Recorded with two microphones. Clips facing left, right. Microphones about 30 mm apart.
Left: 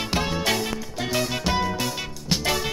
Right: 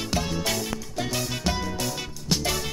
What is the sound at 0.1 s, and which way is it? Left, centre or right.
Music, left.